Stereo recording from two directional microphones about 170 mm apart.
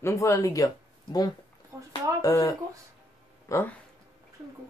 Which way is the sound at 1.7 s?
20° right (ahead or behind).